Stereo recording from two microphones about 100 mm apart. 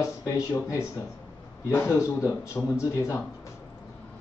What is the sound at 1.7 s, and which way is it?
Speech, 20° left (ahead or behind).